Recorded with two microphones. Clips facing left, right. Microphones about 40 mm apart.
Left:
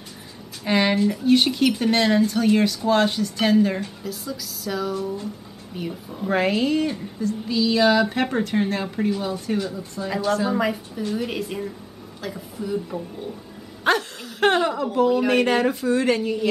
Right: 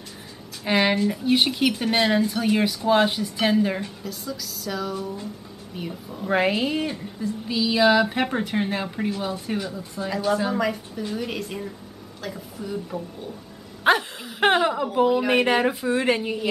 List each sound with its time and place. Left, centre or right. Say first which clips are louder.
0.7 s a woman's voice: left 1 dB; centre
6.3 s a woman's voice: left 1 dB; centre
13.8 s speech: right 1 dB; centre